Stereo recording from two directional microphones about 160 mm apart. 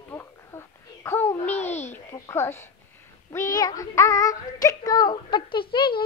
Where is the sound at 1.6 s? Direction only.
45° left (ahead or behind).